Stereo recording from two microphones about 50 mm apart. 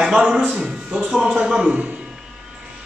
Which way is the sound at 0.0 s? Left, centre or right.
Centre.